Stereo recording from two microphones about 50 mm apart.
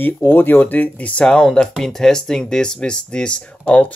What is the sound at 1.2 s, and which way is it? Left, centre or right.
Speech, centre.